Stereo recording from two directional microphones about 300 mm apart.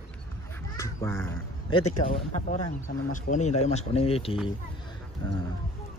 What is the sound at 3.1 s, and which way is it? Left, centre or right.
Speech, left.